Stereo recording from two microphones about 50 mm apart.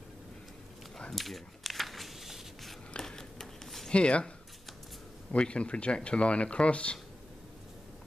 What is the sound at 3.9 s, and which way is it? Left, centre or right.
Speech, left.